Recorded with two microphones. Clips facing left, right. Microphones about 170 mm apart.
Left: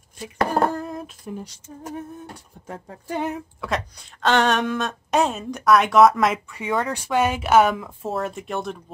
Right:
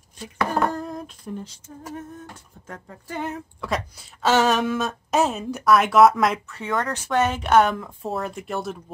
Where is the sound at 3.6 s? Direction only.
Centre (ahead or behind).